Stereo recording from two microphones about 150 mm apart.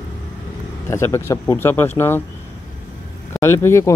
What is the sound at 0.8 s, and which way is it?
Speech, 20° left (ahead or behind).